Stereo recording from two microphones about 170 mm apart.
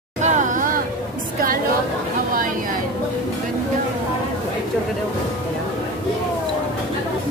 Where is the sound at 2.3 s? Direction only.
55° right (ahead or behind).